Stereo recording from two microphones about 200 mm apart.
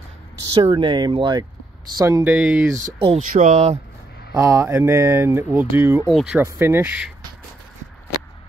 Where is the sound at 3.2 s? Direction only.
40° right (ahead or behind).